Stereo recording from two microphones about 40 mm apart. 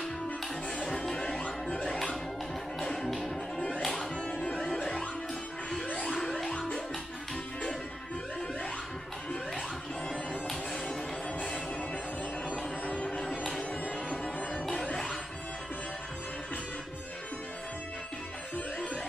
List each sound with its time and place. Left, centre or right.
0.9 s music: centre
3.5 s music: left
3.8 s music: centre
6.1 s music: centre
10.0 s music: centre
10.9 s music: left
13.0 s music: left
14.5 s music: centre